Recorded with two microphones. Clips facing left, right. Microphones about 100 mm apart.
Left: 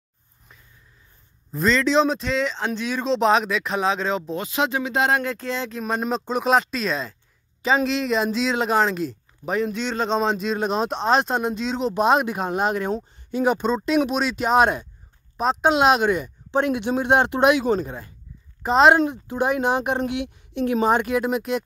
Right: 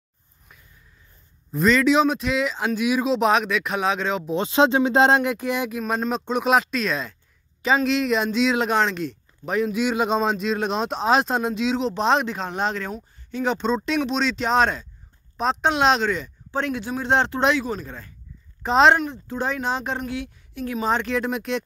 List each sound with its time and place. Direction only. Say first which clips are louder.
1.5 s speech: right 2 dB; 5° right (ahead or behind)
4.4 s speech: right 6 dB; 30° right (ahead or behind)
5.2 s speech: right 3 dB; 15° right (ahead or behind)
5.8 s a woman's voice: even; centre (ahead or behind); by 18.1 s 15° left (ahead or behind)
18.6 s speech: left 1 dB; 5° left (ahead or behind)
19.0 s a woman's voice: left 4 dB; 15° left (ahead or behind)